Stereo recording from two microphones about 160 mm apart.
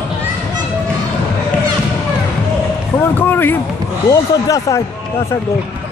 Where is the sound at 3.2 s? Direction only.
10° left (ahead or behind).